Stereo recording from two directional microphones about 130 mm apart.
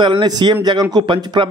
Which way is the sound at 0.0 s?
35° right (ahead or behind).